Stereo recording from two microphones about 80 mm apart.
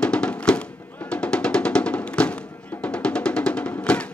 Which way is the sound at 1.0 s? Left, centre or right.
Centre.